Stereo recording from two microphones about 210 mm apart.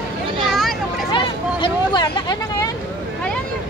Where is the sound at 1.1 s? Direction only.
20° left (ahead or behind).